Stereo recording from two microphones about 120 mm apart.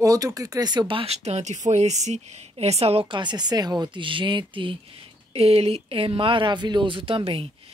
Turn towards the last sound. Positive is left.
turn(degrees=-50)  # may be behind; listen again after turning